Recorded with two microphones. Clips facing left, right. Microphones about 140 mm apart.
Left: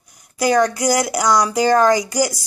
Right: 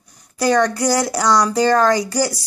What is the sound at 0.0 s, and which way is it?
Speech, 10° left (ahead or behind).